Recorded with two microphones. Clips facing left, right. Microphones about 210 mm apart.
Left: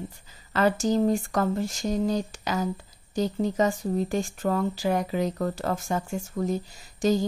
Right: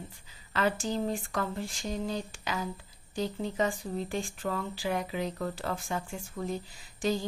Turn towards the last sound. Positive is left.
turn(degrees=40)  # may be behind; listen again after turning